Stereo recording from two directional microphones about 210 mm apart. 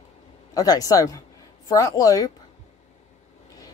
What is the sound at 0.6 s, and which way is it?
Speech, 15° left (ahead or behind).